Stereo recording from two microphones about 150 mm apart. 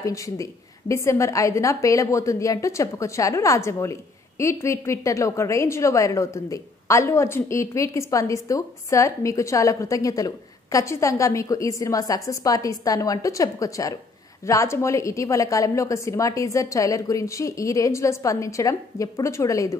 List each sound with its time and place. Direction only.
0.0 s a woman's voice: 20° left (ahead or behind)